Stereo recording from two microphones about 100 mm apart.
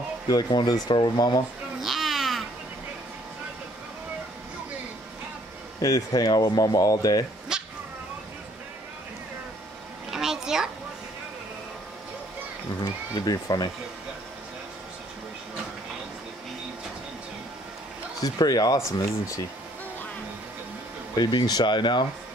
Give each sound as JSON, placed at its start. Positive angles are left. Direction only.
{"t": 0.3, "sound": "speech", "side_deg": 40}
{"t": 1.8, "sound": "babbling", "side_deg": 0}
{"t": 5.8, "sound": "speech", "side_deg": 35}
{"t": 7.5, "sound": "cat", "side_deg": -5}
{"t": 10.1, "sound": "a sound", "side_deg": -5}
{"t": 13.1, "sound": "speech", "side_deg": 40}
{"t": 18.2, "sound": "speech", "side_deg": 40}
{"t": 21.2, "sound": "speech", "side_deg": 45}